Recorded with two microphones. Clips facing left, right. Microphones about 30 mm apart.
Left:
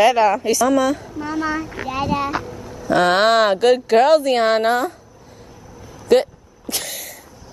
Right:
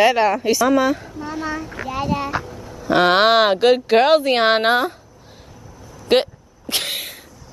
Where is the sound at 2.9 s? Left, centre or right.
Right.